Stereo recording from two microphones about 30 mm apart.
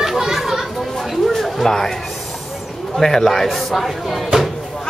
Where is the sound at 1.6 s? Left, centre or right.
Centre.